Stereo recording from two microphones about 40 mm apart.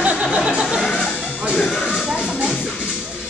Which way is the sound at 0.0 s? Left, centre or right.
Right.